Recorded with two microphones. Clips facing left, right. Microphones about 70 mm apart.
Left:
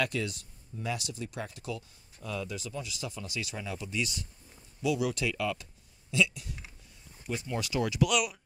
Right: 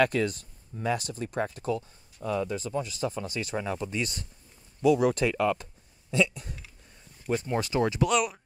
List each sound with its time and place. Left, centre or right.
0.0 s speech: right